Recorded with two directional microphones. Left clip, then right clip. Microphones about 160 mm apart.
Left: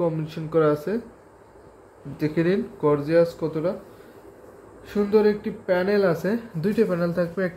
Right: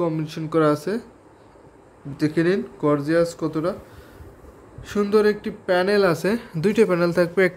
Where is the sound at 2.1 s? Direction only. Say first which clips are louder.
Right 2 dB; 15° right (ahead or behind).